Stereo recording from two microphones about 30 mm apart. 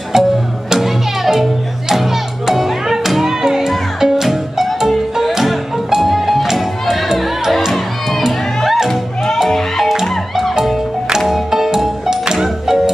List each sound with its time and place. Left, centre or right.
0.1 s music: centre
0.7 s music: centre
9.5 s music: centre
11.1 s music: centre